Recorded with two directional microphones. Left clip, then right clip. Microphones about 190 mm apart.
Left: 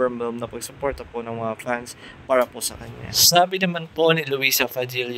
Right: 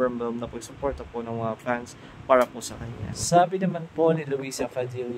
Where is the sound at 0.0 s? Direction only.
30° left (ahead or behind).